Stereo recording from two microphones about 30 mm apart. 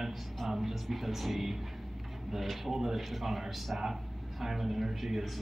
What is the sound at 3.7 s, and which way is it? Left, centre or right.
A man's voice, centre.